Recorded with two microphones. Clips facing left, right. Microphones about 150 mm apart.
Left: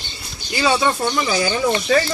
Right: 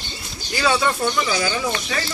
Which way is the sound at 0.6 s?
25° left (ahead or behind).